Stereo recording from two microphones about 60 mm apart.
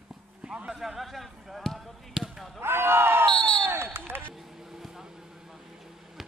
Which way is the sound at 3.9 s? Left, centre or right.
Right.